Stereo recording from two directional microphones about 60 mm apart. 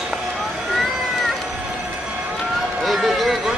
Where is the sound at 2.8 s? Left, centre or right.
Centre.